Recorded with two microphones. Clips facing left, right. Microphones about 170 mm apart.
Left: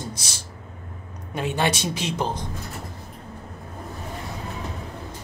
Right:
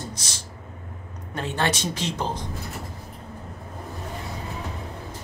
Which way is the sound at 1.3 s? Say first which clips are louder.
Left 2 dB; 15° left (ahead or behind).